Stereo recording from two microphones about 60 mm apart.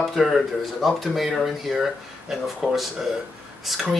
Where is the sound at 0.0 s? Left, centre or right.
Centre.